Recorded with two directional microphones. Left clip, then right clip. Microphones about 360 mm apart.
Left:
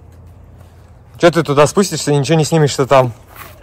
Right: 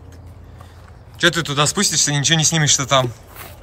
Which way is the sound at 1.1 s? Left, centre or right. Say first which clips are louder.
Left 7 dB; centre.